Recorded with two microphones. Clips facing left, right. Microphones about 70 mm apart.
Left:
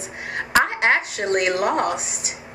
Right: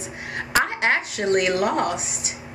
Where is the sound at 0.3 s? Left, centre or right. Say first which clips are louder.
Left 3 dB; left.